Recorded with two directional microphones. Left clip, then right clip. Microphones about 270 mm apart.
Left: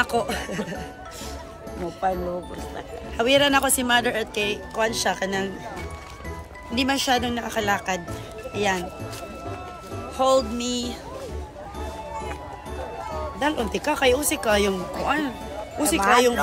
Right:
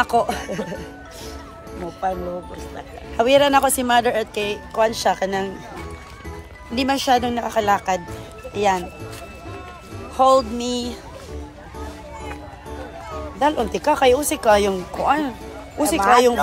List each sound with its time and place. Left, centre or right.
0.0 s speech: centre
2.0 s speech: centre
3.2 s speech: centre
6.7 s speech: centre
10.1 s music: centre
13.4 s speech: centre